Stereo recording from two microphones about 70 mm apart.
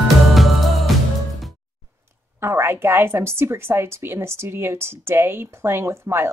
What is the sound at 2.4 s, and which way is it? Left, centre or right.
A woman's voice, right.